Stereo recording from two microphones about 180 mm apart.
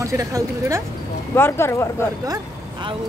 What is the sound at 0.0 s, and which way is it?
Speech, 20° right (ahead or behind).